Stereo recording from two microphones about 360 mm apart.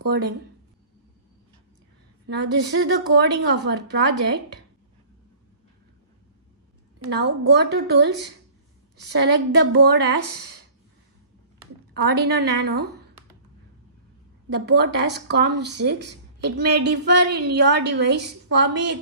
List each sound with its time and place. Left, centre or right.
2.2 s speech: right
7.1 s speech: right
11.9 s speech: right
14.5 s speech: right